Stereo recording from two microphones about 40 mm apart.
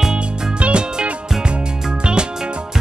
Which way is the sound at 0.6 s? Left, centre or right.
Right.